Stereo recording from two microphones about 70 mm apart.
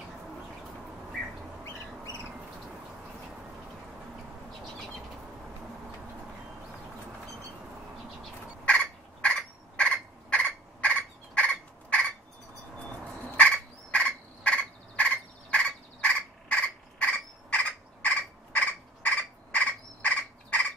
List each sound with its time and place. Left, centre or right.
8.6 s fowl: centre
13.4 s turkey: centre
18.0 s a sound: left